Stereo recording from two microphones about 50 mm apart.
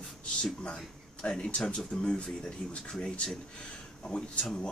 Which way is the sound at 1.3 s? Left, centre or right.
Centre.